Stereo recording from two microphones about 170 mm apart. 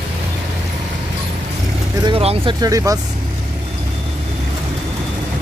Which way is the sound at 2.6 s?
20° right (ahead or behind).